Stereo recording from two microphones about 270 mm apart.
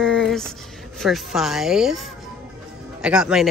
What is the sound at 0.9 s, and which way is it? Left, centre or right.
Speech, centre.